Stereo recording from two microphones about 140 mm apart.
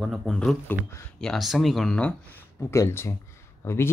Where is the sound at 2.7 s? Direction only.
20° left (ahead or behind).